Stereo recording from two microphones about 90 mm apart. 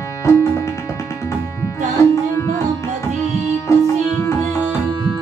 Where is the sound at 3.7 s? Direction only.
30° left (ahead or behind).